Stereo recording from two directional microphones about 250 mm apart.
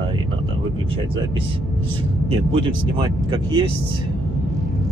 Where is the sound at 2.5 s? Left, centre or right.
Centre.